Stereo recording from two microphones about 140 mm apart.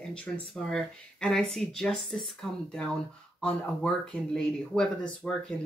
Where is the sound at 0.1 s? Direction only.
5° left (ahead or behind).